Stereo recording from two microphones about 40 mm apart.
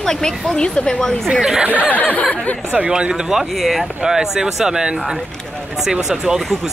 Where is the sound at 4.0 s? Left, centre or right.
Centre.